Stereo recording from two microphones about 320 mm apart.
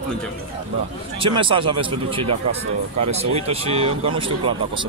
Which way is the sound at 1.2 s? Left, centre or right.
Centre.